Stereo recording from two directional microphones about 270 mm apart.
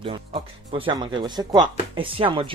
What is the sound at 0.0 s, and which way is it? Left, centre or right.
Speech, centre.